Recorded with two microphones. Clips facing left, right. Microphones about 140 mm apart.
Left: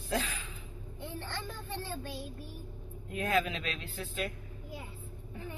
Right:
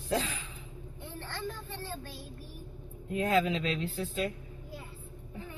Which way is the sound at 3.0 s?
25° right (ahead or behind).